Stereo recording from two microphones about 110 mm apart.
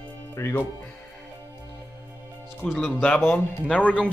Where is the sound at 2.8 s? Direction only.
10° left (ahead or behind).